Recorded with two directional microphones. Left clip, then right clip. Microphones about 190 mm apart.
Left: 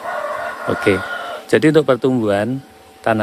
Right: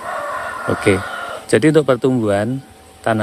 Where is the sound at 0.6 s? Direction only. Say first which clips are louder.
Even; centre (ahead or behind).